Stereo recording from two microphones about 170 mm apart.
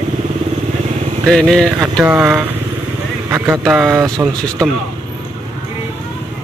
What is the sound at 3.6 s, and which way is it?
Speech, centre (ahead or behind).